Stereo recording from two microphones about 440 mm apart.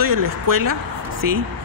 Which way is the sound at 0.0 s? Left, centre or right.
Right.